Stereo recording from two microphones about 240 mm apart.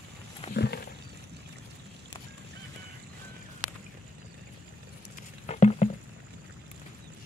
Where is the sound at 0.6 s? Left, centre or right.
Left.